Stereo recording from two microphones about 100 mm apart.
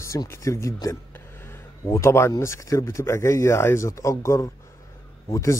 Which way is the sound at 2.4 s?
30° left (ahead or behind).